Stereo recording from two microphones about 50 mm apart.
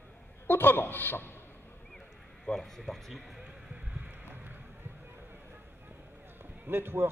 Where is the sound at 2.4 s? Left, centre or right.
Centre.